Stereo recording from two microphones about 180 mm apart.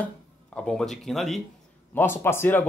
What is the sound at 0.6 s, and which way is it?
Speech, 5° left (ahead or behind).